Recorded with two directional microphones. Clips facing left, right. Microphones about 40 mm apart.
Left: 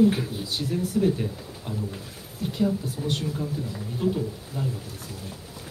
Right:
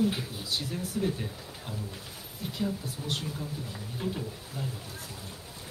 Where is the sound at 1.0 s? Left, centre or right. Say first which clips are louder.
Left 8 dB; centre.